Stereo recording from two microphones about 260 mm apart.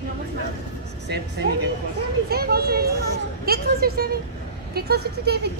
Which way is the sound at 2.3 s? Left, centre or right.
Right.